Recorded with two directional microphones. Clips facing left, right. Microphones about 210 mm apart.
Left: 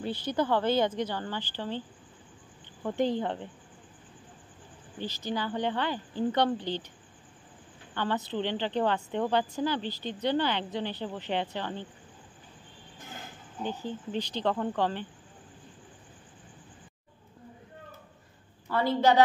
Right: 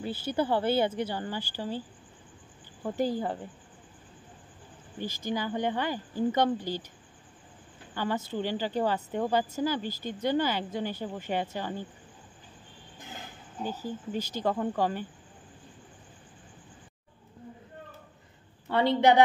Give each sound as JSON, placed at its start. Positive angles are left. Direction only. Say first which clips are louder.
{"t": 0.0, "sound": "speech", "louder": "even", "side_deg": -5}
{"t": 4.9, "sound": "speech", "louder": "right 1 dB", "side_deg": -10}
{"t": 7.9, "sound": "speech", "louder": "even", "side_deg": -10}
{"t": 13.8, "sound": "speech", "louder": "even", "side_deg": -10}
{"t": 18.7, "sound": "a woman's voice", "louder": "right 2 dB", "side_deg": -20}